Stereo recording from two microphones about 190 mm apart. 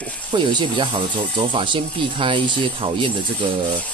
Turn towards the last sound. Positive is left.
turn(degrees=-25)  # may be behind; listen again after turning